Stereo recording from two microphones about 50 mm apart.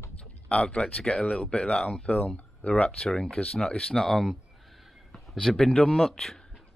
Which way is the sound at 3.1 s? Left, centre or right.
Centre.